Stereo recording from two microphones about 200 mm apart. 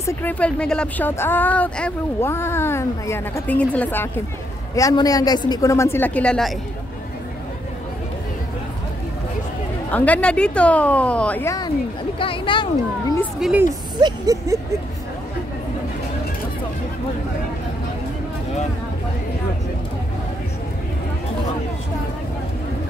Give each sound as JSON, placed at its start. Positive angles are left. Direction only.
{"t": 0.0, "sound": "speech", "side_deg": 10}
{"t": 9.8, "sound": "speech", "side_deg": 5}
{"t": 13.4, "sound": "speech", "side_deg": -5}
{"t": 13.9, "sound": "speech", "side_deg": -20}